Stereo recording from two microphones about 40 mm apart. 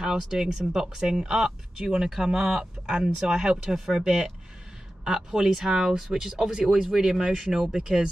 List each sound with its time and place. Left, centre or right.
0.0 s speech: centre
4.0 s speech: centre